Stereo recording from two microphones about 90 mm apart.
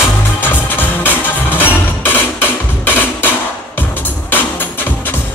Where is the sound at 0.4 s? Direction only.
25° left (ahead or behind).